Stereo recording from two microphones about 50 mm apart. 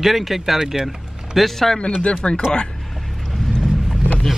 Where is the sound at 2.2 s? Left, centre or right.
Left.